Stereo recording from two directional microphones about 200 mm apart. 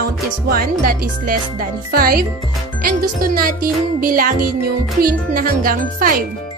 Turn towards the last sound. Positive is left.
turn(degrees=-45)  # may be behind; listen again after turning